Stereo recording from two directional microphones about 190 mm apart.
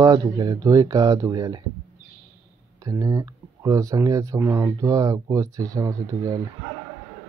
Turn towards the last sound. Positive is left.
turn(degrees=-20)  # may be behind; listen again after turning